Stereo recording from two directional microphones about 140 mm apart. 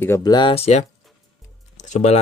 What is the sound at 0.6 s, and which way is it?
Speech, 50° left (ahead or behind).